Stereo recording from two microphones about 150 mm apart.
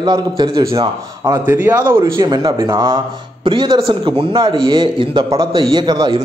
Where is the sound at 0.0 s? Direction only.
30° right (ahead or behind).